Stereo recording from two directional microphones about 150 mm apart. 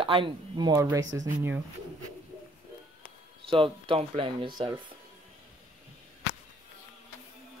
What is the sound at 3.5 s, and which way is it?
Speech, 35° right (ahead or behind).